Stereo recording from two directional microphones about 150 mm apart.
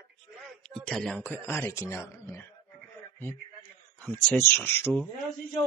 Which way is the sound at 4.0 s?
10° left (ahead or behind).